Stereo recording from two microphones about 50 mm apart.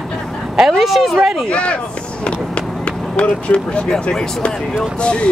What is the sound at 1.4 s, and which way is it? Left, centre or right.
Speech, left.